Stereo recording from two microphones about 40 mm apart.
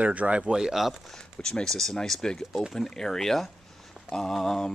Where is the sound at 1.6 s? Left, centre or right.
Centre.